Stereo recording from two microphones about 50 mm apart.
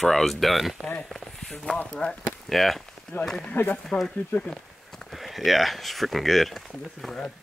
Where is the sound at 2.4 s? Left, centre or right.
Centre.